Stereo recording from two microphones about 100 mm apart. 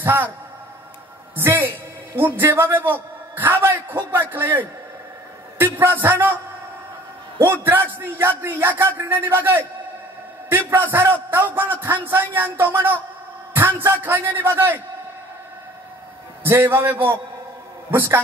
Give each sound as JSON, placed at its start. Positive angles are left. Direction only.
{"t": 0.0, "sound": "a man's voice", "side_deg": -20}
{"t": 1.3, "sound": "a woman's voice", "side_deg": -20}
{"t": 5.6, "sound": "a man's voice", "side_deg": -20}
{"t": 7.3, "sound": "a man's voice", "side_deg": -20}
{"t": 16.4, "sound": "a man's voice", "side_deg": -25}